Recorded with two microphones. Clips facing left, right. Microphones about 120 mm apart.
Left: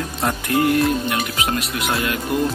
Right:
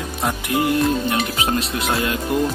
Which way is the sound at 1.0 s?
30° right (ahead or behind).